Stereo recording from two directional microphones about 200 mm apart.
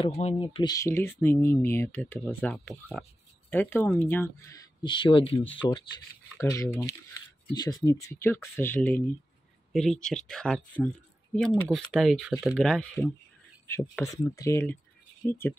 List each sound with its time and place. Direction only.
0.0 s speech: 30° left (ahead or behind)
0.5 s speech: 20° left (ahead or behind); by 13.1 s centre (ahead or behind)
13.7 s speech: 15° left (ahead or behind)